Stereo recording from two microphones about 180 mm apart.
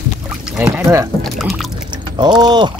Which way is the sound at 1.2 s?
Centre (ahead or behind).